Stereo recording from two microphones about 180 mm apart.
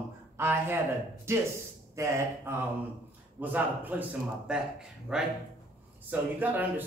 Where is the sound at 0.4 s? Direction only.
15° right (ahead or behind).